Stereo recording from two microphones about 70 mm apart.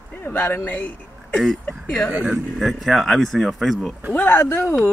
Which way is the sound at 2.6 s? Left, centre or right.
Centre.